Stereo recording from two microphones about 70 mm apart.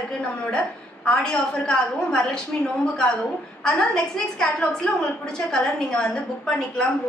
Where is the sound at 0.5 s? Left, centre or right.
Centre.